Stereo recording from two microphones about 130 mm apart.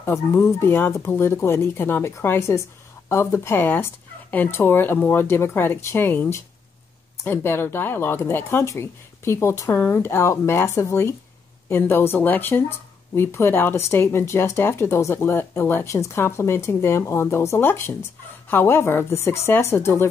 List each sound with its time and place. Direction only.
0.0 s speech: 20° left (ahead or behind)
7.2 s speech: 20° left (ahead or behind)